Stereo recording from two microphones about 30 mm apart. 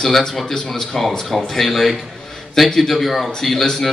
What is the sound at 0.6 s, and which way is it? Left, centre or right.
Speech, centre.